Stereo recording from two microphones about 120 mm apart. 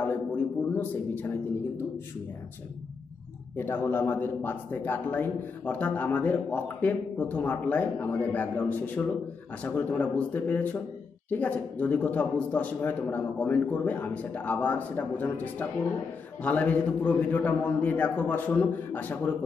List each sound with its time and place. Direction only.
0.0 s a sound: 10° left (ahead or behind)
1.1 s a man's voice: 15° left (ahead or behind)
3.5 s a man's voice: 20° left (ahead or behind)